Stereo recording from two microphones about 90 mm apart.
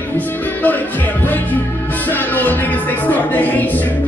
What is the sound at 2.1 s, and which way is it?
A woman's voice, 20° left (ahead or behind).